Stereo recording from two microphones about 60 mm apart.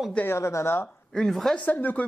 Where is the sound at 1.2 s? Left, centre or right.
Centre.